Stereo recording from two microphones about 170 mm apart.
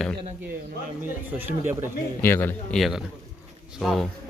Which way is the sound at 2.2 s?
15° left (ahead or behind).